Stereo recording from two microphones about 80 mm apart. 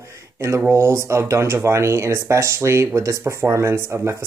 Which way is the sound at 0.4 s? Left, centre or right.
Right.